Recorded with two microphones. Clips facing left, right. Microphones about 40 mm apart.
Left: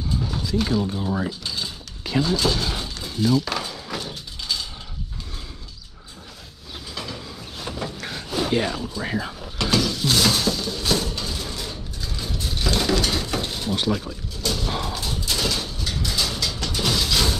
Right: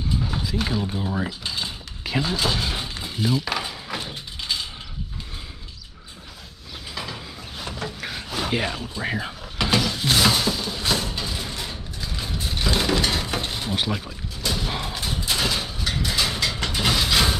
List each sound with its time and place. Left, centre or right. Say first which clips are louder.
0.1 s boat: left 2 dB; centre
0.9 s speech: left 1 dB; centre
1.2 s mechanisms: even; centre
7.0 s a sound: right 1 dB; centre
9.0 s mechanisms: right 2 dB; centre